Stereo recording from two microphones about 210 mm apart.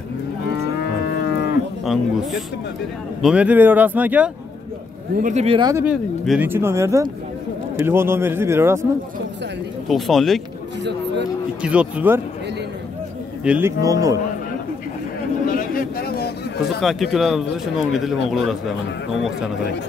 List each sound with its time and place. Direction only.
3.2 s speech: 5° right (ahead or behind)
5.1 s speech: 35° right (ahead or behind); by 8.8 s 10° right (ahead or behind)
9.8 s speech: centre (ahead or behind)
10.8 s a sound: 55° right (ahead or behind)
11.6 s speech: 5° right (ahead or behind)
13.4 s speech: 10° right (ahead or behind)
15.4 s a sound: 40° left (ahead or behind)
16.8 s speech: centre (ahead or behind)